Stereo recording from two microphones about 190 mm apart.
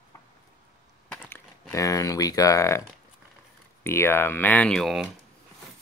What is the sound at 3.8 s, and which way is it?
Speech, 15° left (ahead or behind).